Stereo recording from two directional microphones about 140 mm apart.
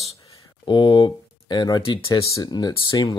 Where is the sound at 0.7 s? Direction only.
35° left (ahead or behind).